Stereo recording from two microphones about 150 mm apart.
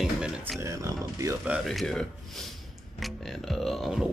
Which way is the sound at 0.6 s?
20° right (ahead or behind).